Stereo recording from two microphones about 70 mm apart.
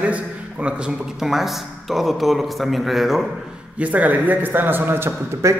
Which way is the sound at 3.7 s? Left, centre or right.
Right.